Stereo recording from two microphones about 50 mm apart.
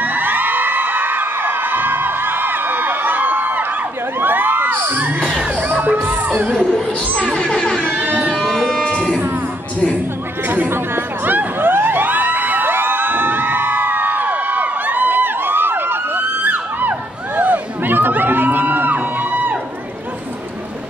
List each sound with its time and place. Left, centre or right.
0.0 s crowd: right
4.2 s children shouting: right
5.2 s children shouting: right
6.0 s music: right
7.2 s a sound: centre
7.8 s music: right
8.4 s music: centre
10.7 s a sound: right
17.4 s crowd: right